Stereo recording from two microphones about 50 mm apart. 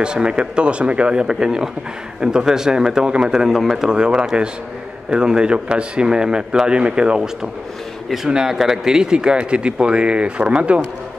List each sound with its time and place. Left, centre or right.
0.0 s speech: centre
3.3 s speech: centre
8.3 s speech: centre